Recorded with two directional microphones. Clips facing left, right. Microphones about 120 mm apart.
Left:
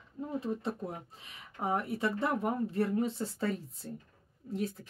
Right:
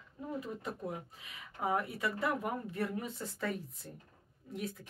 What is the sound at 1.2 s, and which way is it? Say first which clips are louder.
Speech: left 1 dB; 30° left (ahead or behind).